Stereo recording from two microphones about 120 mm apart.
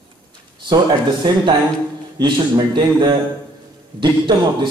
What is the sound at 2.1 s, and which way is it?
Speech, 40° right (ahead or behind).